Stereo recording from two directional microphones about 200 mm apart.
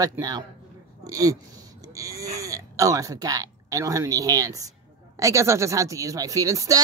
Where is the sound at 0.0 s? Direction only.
20° right (ahead or behind).